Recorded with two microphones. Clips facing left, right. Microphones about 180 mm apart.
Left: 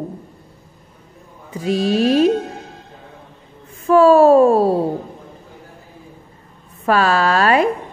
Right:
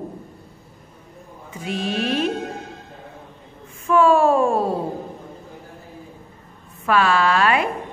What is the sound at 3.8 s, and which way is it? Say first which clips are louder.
Speech: left 6 dB; 35° left (ahead or behind).